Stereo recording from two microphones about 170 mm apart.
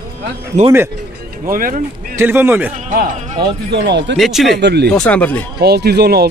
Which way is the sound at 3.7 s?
90° right.